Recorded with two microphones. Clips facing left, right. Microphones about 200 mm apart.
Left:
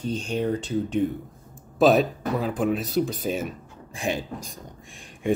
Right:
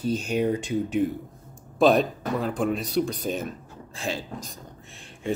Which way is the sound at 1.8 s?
5° left (ahead or behind).